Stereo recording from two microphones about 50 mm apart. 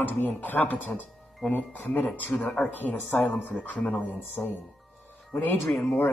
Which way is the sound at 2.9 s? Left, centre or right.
Left.